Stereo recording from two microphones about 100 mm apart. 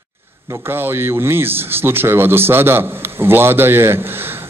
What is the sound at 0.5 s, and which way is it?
A man's voice, 25° right (ahead or behind).